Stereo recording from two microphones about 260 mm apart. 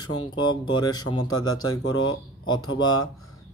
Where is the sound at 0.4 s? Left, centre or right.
Centre.